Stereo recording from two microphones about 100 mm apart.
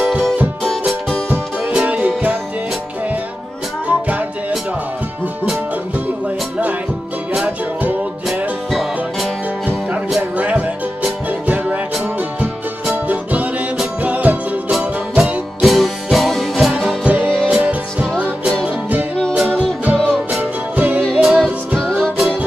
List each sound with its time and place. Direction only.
0.0 s music: 10° right (ahead or behind)
1.7 s music: 10° right (ahead or behind)
7.3 s music: 15° right (ahead or behind)
8.3 s music: centre (ahead or behind)
10.3 s music: 15° right (ahead or behind)
12.9 s music: 15° right (ahead or behind)
17.2 s music: 10° left (ahead or behind)
17.5 s music: 10° right (ahead or behind)